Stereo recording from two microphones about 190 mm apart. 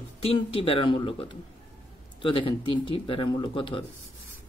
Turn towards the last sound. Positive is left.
turn(degrees=25)  # may be behind; listen again after turning